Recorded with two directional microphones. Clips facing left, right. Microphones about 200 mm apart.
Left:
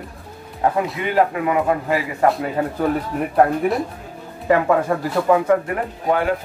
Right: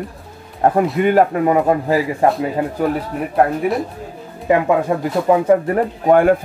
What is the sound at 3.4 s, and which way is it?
Speech, centre (ahead or behind).